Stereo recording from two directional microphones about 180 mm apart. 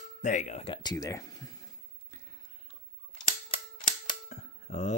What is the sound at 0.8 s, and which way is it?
Speech, 20° left (ahead or behind).